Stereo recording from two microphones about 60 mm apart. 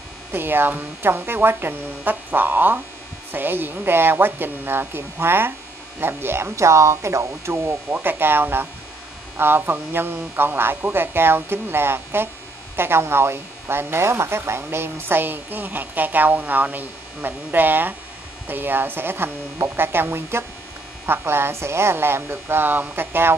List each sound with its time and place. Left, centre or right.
0.3 s speech: right
7.9 s speech: right